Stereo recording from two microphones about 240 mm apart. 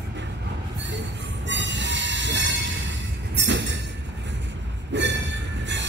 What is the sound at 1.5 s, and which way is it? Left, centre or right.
Train, right.